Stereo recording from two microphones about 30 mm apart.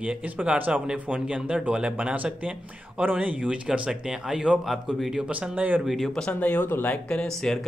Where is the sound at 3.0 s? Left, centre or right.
Right.